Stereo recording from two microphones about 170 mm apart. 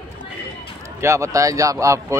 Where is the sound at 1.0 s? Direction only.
15° right (ahead or behind).